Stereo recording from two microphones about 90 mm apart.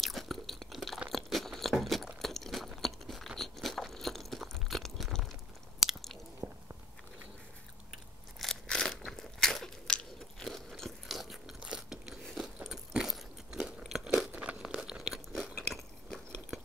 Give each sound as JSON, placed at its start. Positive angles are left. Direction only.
{"t": 0.0, "sound": "crunch", "side_deg": 0}
{"t": 1.1, "sound": "a sound", "side_deg": 0}
{"t": 5.8, "sound": "chewing", "side_deg": -5}
{"t": 6.4, "sound": "biting", "side_deg": -35}
{"t": 8.4, "sound": "crunch", "side_deg": 5}
{"t": 10.4, "sound": "biting", "side_deg": 5}
{"t": 12.2, "sound": "biting", "side_deg": 5}
{"t": 12.5, "sound": "biting", "side_deg": -10}
{"t": 14.3, "sound": "crunch", "side_deg": -15}